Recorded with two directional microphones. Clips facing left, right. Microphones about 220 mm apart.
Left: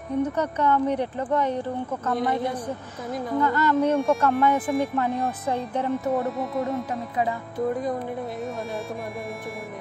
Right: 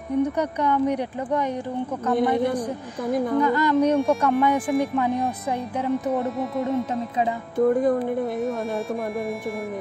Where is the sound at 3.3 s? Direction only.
15° right (ahead or behind).